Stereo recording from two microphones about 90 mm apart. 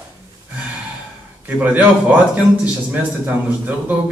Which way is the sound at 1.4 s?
20° right (ahead or behind).